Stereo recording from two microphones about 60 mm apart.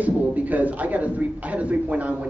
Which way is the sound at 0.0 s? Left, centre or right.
Right.